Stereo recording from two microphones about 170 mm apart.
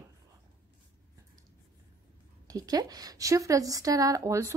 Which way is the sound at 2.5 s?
20° right (ahead or behind).